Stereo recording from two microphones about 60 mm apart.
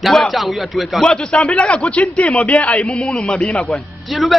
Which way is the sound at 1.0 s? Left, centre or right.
Centre.